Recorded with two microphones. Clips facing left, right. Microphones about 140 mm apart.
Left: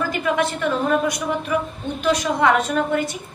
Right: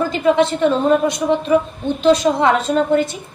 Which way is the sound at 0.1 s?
25° right (ahead or behind).